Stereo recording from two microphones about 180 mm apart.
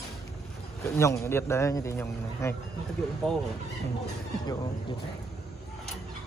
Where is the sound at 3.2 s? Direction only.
Centre (ahead or behind).